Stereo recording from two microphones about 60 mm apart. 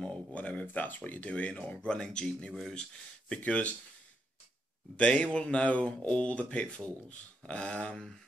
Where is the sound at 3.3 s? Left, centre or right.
Left.